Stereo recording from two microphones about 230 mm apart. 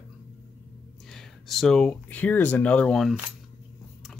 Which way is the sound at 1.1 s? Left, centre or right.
Centre.